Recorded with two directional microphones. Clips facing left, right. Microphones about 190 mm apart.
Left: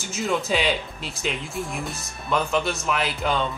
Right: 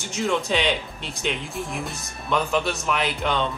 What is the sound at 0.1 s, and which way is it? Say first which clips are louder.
Speech: right 1 dB; 5° left (ahead or behind).